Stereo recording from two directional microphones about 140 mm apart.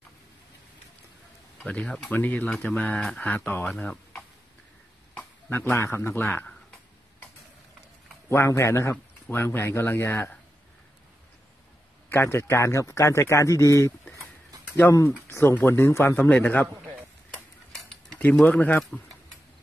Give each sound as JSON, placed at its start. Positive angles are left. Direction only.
{"t": 1.6, "sound": "speech", "side_deg": 5}
{"t": 8.3, "sound": "a man's voice", "side_deg": 20}
{"t": 12.1, "sound": "a man's voice", "side_deg": 20}
{"t": 17.7, "sound": "keys jangling", "side_deg": 5}